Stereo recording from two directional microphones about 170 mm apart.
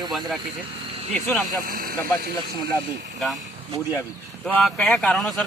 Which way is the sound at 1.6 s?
55° right (ahead or behind).